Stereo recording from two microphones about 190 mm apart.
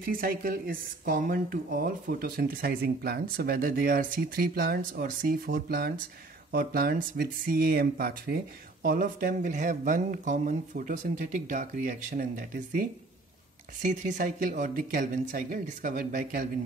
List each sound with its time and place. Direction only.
0.0 s speech: 50° right (ahead or behind)
13.8 s speech: 40° right (ahead or behind)